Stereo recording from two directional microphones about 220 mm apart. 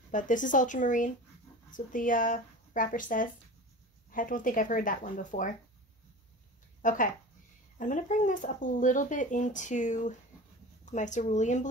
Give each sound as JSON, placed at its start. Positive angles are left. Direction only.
{"t": 0.1, "sound": "speech", "side_deg": 35}
{"t": 6.8, "sound": "speech", "side_deg": 35}